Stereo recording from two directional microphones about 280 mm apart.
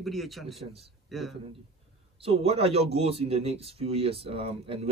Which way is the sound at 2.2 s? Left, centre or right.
Right.